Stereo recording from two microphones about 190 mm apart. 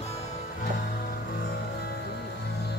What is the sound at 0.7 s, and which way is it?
Music, 50° left (ahead or behind).